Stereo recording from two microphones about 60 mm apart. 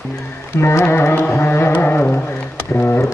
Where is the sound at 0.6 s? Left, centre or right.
Left.